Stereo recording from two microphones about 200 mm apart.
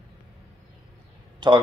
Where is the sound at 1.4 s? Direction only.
25° right (ahead or behind).